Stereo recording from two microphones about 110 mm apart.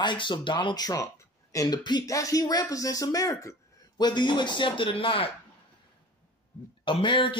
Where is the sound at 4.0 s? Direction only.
40° left (ahead or behind).